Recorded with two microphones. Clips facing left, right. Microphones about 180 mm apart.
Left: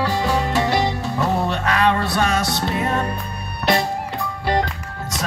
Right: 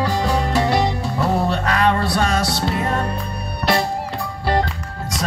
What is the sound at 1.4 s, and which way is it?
Music, 35° right (ahead or behind).